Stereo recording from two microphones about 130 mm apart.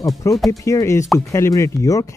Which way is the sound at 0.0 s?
25° left (ahead or behind).